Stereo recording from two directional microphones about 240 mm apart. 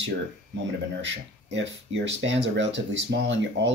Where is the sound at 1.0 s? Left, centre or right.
Right.